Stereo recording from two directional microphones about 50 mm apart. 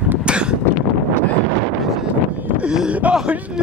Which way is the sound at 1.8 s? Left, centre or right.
Centre.